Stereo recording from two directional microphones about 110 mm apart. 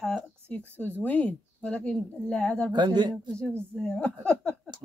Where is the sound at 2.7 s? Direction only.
40° right (ahead or behind).